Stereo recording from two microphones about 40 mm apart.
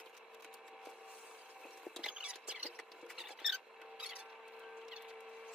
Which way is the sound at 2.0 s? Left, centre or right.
Centre.